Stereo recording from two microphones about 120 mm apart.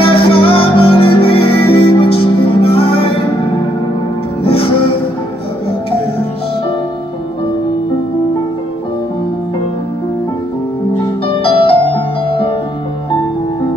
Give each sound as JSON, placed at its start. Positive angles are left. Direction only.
{"t": 0.0, "sound": "music", "side_deg": 50}
{"t": 11.2, "sound": "music", "side_deg": 50}